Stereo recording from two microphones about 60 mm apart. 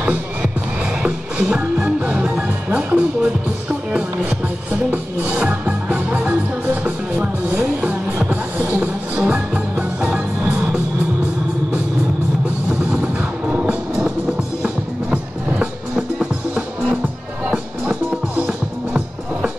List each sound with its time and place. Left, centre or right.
0.0 s music: right
1.4 s music: centre
1.9 s music: centre
4.9 s music: right
12.6 s music: centre
15.6 s music: centre